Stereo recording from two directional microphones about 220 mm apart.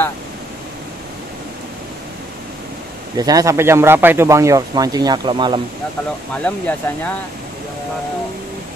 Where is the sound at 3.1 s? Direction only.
15° right (ahead or behind).